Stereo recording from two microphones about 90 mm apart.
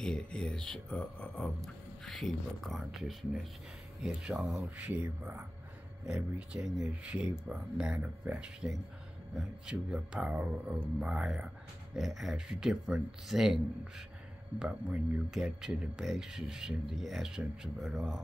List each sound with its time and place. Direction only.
0.0 s speech: 10° left (ahead or behind)
1.6 s speech: centre (ahead or behind)
4.7 s speech: 15° right (ahead or behind)